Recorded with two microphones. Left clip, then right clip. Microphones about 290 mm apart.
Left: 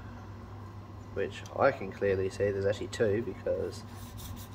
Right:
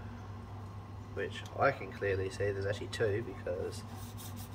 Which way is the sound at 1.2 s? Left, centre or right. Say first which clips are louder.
Left 4 dB; left.